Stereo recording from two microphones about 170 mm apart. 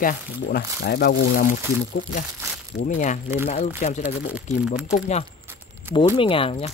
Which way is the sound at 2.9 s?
45° left (ahead or behind).